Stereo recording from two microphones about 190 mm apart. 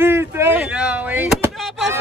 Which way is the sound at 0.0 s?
10° right (ahead or behind).